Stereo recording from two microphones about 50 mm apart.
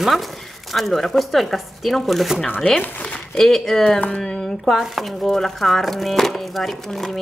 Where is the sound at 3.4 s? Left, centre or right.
Centre.